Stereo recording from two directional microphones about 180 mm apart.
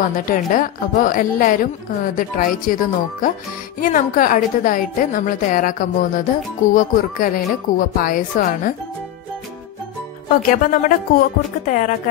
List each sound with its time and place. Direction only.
0.1 s a woman's voice: 50° left (ahead or behind)
10.5 s a woman's voice: 50° left (ahead or behind)